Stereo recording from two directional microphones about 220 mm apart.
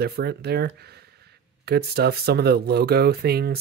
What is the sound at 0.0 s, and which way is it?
Speech, 45° right (ahead or behind).